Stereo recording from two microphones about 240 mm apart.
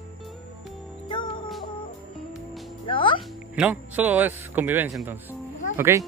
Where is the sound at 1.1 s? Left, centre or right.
Centre.